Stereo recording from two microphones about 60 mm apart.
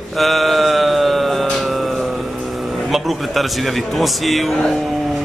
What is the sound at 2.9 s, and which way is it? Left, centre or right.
A man's voice, centre.